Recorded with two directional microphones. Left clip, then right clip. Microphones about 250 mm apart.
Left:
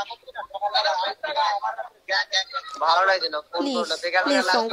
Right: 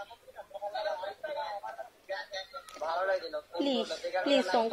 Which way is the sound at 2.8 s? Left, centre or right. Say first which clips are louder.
Left 12 dB; left.